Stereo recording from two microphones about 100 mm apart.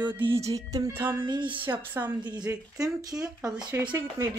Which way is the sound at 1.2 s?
50° right (ahead or behind).